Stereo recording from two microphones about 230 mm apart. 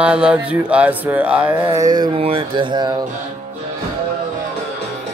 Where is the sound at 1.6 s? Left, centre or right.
Centre.